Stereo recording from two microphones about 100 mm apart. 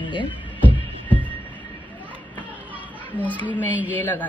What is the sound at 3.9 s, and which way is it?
Speech, 20° left (ahead or behind).